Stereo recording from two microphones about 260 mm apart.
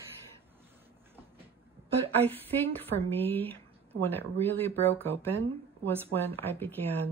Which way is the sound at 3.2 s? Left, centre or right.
Centre.